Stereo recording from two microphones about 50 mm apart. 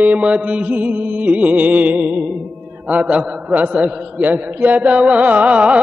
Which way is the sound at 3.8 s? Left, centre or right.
Right.